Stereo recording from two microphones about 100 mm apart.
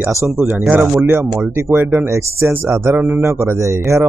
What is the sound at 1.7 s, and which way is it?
Speech, 15° right (ahead or behind).